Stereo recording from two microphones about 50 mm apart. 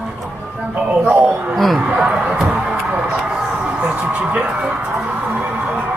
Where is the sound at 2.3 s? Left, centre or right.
Right.